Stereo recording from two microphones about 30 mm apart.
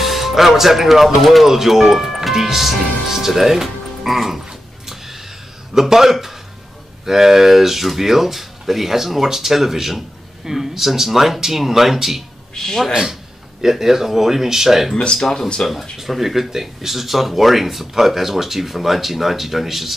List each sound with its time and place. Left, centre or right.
0.0 s speech: centre
4.8 s music: centre
5.8 s speech: centre
12.5 s speech: centre
12.9 s speech: centre
15.6 s speech: left
16.0 s speech: centre